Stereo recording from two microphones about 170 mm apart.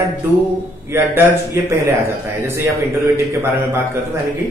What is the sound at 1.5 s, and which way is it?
A man's voice, 15° right (ahead or behind).